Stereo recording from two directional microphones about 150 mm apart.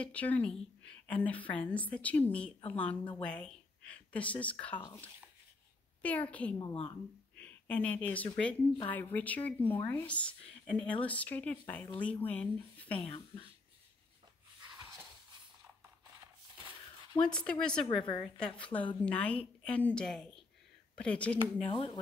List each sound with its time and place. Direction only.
0.0 s a woman's voice: 10° left (ahead or behind)
4.7 s speech: 30° left (ahead or behind)
6.0 s a woman's voice: 10° left (ahead or behind)
6.6 s speech: 35° left (ahead or behind)
7.3 s a sound: 10° left (ahead or behind)
8.4 s a woman's voice: 10° left (ahead or behind)
17.2 s speech: 5° left (ahead or behind)
17.8 s a woman's voice: 30° left (ahead or behind)
18.4 s a woman's voice: 10° left (ahead or behind)
21.6 s speech: 35° left (ahead or behind)